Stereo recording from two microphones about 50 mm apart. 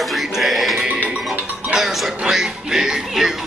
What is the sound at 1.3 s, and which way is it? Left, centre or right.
Music, centre.